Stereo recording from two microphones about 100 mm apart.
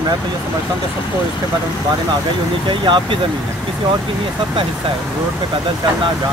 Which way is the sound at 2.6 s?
55° right (ahead or behind).